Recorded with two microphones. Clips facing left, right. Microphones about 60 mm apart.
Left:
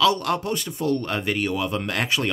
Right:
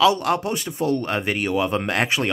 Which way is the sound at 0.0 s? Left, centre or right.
Centre.